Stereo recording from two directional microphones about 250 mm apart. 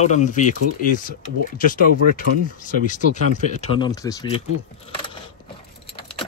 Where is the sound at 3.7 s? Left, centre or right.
Centre.